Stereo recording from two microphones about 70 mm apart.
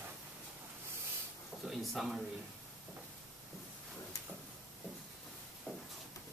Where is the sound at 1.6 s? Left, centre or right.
Centre.